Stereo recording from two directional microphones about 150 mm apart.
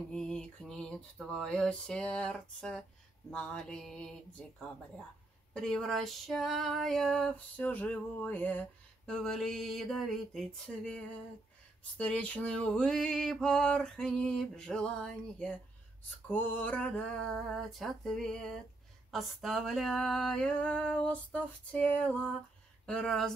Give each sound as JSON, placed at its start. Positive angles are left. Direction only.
{"t": 0.1, "sound": "female singing", "side_deg": 5}